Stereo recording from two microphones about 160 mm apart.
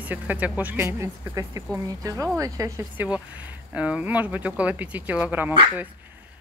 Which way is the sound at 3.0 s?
5° right (ahead or behind).